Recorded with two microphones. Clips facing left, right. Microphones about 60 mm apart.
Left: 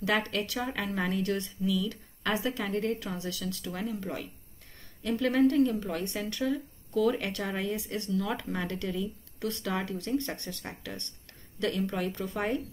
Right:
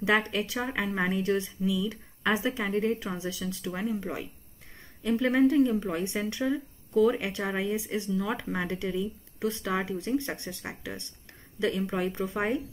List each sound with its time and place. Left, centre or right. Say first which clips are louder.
0.0 s speech: right 3 dB; centre